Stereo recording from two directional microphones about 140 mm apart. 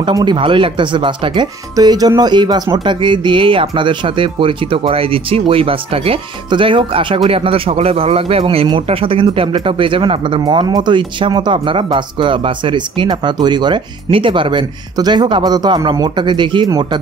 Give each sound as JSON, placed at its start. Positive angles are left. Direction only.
{"t": 0.0, "sound": "speech", "side_deg": -30}
{"t": 10.4, "sound": "speech", "side_deg": -30}